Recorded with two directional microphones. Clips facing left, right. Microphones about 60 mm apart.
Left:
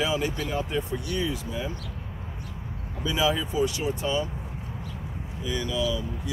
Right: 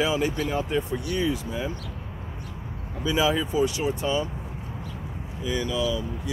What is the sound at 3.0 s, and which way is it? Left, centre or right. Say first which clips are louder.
Speech: right 2 dB; right.